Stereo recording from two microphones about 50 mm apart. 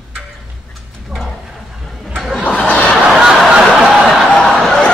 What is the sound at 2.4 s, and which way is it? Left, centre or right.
Chuckle, left.